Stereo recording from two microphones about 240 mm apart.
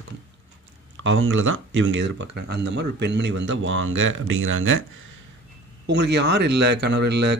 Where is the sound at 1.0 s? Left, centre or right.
Right.